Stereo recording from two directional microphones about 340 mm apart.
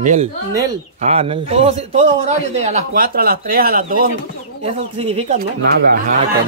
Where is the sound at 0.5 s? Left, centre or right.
Centre.